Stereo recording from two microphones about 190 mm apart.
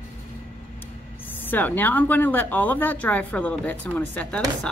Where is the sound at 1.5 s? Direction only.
10° left (ahead or behind).